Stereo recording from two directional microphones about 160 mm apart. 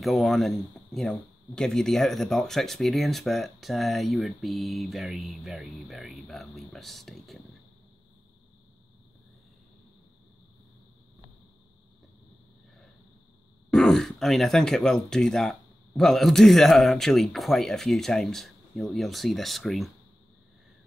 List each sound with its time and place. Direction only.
0.0 s speech: centre (ahead or behind)
13.7 s speech: 5° left (ahead or behind)